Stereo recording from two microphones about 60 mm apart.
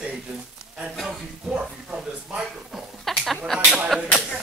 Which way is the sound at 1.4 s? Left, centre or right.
Centre.